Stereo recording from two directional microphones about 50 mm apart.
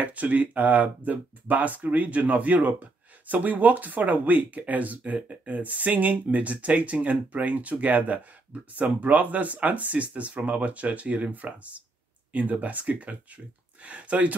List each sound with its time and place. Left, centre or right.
0.0 s speech: right